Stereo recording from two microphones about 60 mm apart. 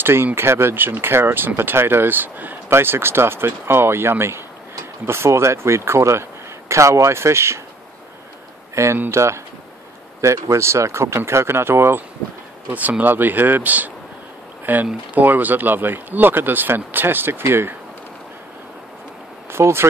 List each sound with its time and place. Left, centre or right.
0.0 s speech: right
8.7 s speech: right
12.7 s speech: right
19.5 s speech: right